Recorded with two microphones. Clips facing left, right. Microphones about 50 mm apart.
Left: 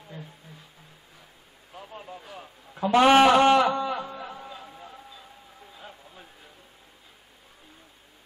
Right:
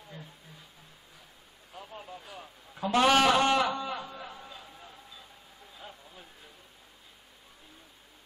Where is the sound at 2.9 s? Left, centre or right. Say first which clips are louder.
Left 6 dB; left.